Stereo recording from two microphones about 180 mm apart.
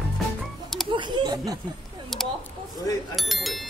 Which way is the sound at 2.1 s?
Centre (ahead or behind).